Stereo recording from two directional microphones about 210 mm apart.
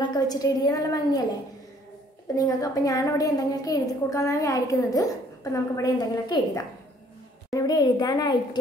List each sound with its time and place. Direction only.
0.0 s a woman's voice: 20° left (ahead or behind)
2.3 s a woman's voice: 15° left (ahead or behind)